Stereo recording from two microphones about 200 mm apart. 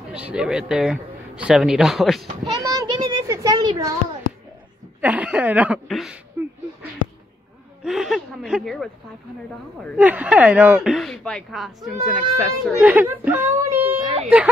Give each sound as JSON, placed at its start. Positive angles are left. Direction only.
{"t": 0.1, "sound": "a man's voice", "side_deg": -5}
{"t": 2.6, "sound": "speech", "side_deg": -15}
{"t": 5.0, "sound": "speech", "side_deg": -5}
{"t": 6.4, "sound": "a sound", "side_deg": -10}
{"t": 7.8, "sound": "a man's voice", "side_deg": 0}
{"t": 9.9, "sound": "speech", "side_deg": -10}
{"t": 14.0, "sound": "a sound", "side_deg": -30}